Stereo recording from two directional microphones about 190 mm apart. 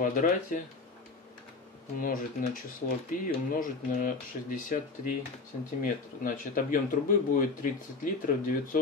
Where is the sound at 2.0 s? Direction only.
45° left (ahead or behind).